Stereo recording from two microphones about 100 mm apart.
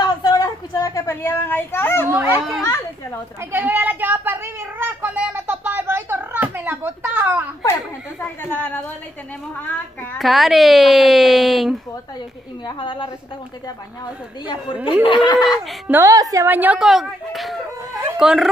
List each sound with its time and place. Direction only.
0.0 s a sound: 45° left (ahead or behind); by 2.0 s 25° left (ahead or behind)
2.0 s a child's voice: 25° right (ahead or behind)
2.6 s a child's voice: 30° left (ahead or behind)
3.3 s a sound: 20° right (ahead or behind)
8.2 s a woman's voice: 20° left (ahead or behind)
10.1 s speech: centre (ahead or behind)
12.6 s a woman's voice: 55° left (ahead or behind)
15.0 s speech: 55° left (ahead or behind)
15.3 s a woman's voice: 45° left (ahead or behind)
15.9 s a woman's voice: 30° right (ahead or behind)
16.4 s a woman's voice: 15° right (ahead or behind)
16.8 s speech: 5° right (ahead or behind)